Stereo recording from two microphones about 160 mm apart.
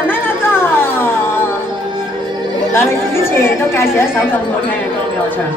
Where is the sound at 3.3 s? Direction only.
15° left (ahead or behind).